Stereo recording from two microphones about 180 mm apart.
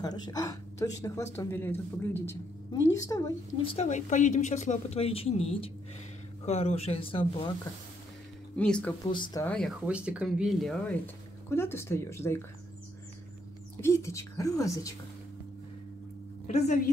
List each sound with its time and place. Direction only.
0.0 s a woman's voice: 20° left (ahead or behind)
3.6 s speech: 40° left (ahead or behind)
8.5 s speech: 5° left (ahead or behind)
9.1 s a woman's voice: 25° left (ahead or behind)
9.4 s speech: 5° left (ahead or behind)
13.7 s speech: 15° left (ahead or behind)
16.4 s a woman's voice: 40° left (ahead or behind)